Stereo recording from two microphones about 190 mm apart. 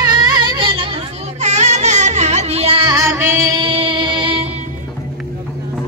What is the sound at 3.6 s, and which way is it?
Music, 25° right (ahead or behind).